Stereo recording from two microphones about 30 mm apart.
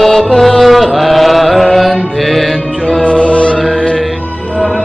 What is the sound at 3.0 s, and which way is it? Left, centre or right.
Music, left.